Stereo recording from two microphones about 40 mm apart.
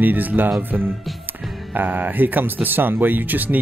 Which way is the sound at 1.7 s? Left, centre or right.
Right.